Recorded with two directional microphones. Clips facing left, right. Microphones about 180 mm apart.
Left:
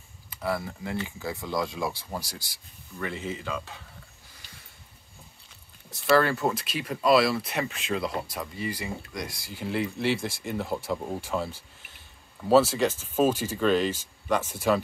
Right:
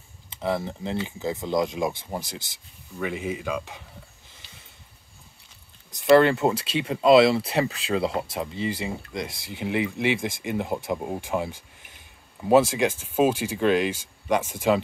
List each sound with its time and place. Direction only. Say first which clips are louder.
0.3 s speech: right 3 dB; 20° right (ahead or behind)
5.9 s speech: right 6 dB; 20° right (ahead or behind)